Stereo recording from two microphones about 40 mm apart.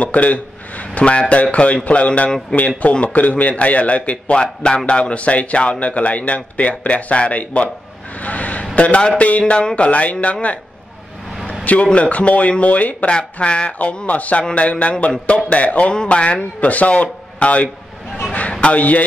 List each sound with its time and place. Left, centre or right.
0.0 s a man's voice: left
4.4 s a man's voice: left
8.2 s vehicle: left
8.7 s a man's voice: left
11.6 s a man's voice: left
13.4 s a man's voice: left
15.9 s speech: left
18.7 s a man's voice: left